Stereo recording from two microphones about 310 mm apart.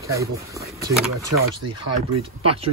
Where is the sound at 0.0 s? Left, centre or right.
Centre.